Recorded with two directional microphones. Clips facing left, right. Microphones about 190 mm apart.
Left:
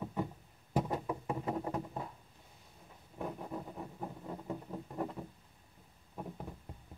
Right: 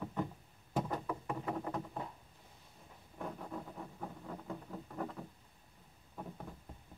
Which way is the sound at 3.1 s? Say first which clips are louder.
Left 3 dB; 20° left (ahead or behind).